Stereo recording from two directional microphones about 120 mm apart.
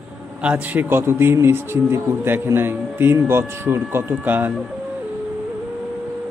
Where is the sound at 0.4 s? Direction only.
10° right (ahead or behind).